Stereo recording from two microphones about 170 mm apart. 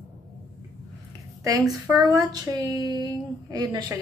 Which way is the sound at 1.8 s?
20° right (ahead or behind).